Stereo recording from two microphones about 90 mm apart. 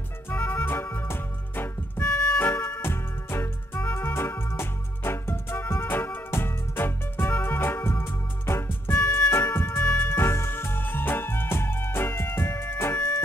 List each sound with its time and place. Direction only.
0.3 s music: 20° left (ahead or behind)